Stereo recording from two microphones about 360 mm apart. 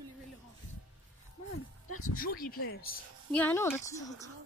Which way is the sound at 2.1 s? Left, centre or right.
Left.